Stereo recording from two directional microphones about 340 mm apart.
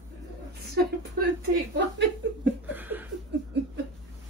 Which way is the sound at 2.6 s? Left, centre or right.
Centre.